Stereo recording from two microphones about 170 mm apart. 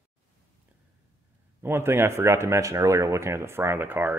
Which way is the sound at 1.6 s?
15° right (ahead or behind).